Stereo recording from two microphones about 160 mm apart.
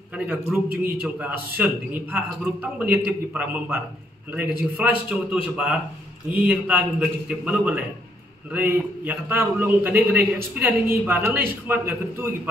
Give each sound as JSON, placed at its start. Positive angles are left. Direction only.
{"t": 0.5, "sound": "a man's voice", "side_deg": -10}
{"t": 6.4, "sound": "a man's voice", "side_deg": -10}